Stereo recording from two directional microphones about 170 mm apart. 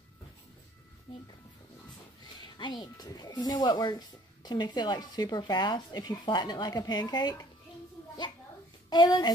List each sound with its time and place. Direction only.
2.4 s speech: 25° left (ahead or behind)
8.9 s speech: 25° left (ahead or behind)